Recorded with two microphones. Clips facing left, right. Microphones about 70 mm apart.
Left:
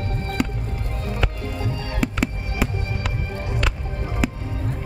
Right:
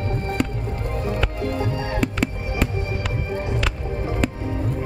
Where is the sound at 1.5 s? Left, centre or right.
Right.